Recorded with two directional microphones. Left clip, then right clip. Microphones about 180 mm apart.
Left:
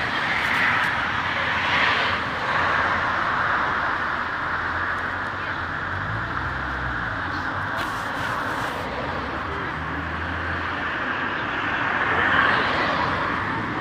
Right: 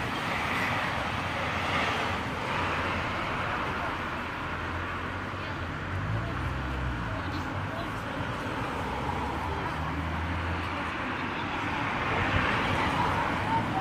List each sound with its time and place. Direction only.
1.7 s vehicle: 40° right (ahead or behind)
12.1 s vehicle: 50° right (ahead or behind)